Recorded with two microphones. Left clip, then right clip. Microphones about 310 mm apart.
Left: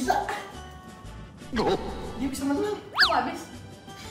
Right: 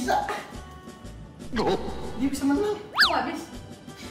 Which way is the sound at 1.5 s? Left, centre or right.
Centre.